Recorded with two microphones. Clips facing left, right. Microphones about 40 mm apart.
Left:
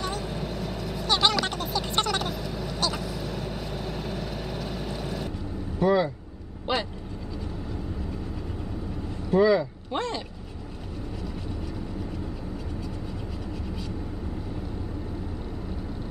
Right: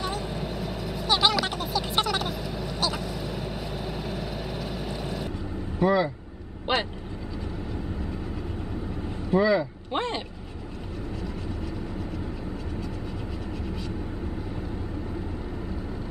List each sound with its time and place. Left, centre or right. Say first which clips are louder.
0.0 s vehicle: even; centre
5.8 s speech: even; centre
6.7 s vehicle: right 2 dB; right
9.3 s vehicle: left 2 dB; centre
9.9 s vehicle: right 1 dB; right